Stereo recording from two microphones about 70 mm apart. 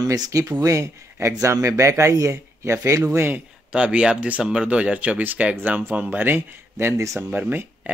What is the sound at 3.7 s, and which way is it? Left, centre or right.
Speech, centre.